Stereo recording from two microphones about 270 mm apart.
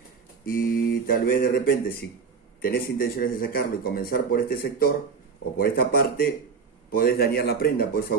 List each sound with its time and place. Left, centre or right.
0.5 s speech: left